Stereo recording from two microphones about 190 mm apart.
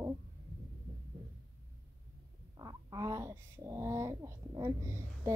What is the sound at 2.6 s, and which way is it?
Speech, 20° right (ahead or behind).